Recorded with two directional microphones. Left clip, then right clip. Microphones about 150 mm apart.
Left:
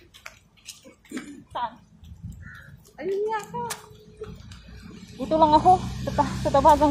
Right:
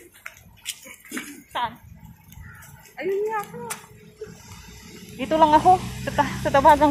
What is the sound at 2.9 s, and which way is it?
Speech, 40° right (ahead or behind).